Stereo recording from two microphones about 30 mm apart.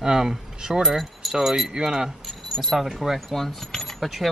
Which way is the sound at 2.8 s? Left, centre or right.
Centre.